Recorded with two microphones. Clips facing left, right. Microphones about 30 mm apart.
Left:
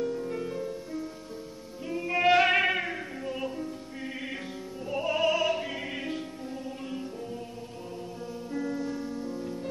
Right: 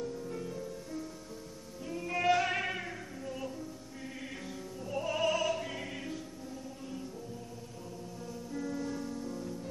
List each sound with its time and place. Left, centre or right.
0.0 s music: left
1.9 s music: left
2.3 s music: left
4.8 s opera: left
8.5 s music: left